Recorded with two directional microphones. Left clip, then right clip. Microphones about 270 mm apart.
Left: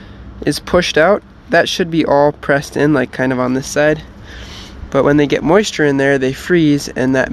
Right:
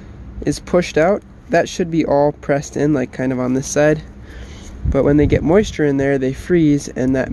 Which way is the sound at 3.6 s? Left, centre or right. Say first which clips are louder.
Right 1 dB; centre.